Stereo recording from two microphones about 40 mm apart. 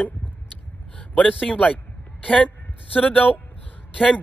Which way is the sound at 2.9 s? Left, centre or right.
Left.